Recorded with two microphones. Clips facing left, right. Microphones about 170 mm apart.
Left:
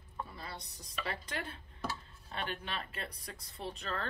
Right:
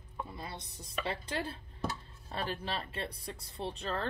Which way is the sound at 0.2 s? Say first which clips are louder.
Right 2 dB; 20° right (ahead or behind).